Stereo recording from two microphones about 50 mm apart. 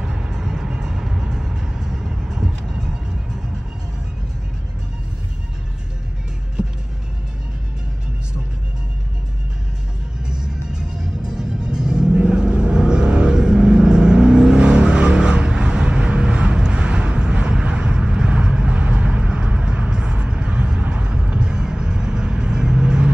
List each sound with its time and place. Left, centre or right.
0.0 s vehicle: centre
6.6 s music: centre
10.2 s music: centre